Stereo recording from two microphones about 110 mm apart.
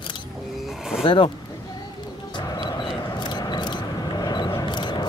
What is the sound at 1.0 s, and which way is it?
Speech, 50° left (ahead or behind).